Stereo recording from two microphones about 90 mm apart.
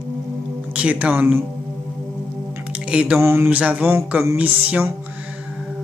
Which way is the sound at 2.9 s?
10° right (ahead or behind).